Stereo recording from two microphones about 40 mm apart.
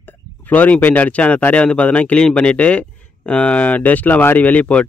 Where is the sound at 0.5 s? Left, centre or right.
Left.